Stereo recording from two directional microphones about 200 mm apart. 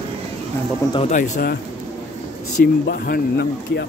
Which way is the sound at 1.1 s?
45° left (ahead or behind).